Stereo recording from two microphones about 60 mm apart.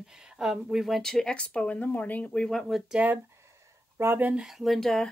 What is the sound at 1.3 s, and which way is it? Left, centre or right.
Speech, left.